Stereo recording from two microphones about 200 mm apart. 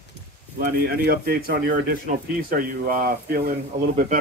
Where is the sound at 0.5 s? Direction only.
50° right (ahead or behind).